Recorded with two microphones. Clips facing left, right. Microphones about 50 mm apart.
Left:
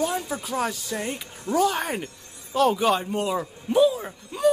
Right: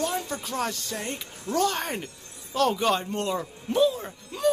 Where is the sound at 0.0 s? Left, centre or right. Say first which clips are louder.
Left 2 dB; centre.